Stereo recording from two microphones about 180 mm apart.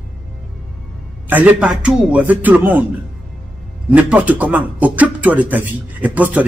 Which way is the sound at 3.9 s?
10° right (ahead or behind).